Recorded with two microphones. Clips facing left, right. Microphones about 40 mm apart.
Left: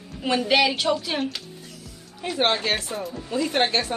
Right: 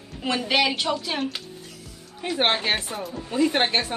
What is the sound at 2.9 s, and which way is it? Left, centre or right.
Speech, centre.